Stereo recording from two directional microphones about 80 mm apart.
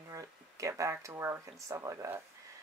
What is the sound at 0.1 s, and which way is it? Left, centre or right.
Speech, right.